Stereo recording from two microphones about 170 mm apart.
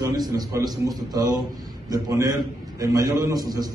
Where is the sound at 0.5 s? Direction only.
20° right (ahead or behind).